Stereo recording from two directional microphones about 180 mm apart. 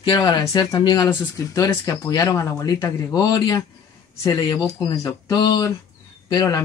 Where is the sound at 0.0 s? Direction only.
20° left (ahead or behind).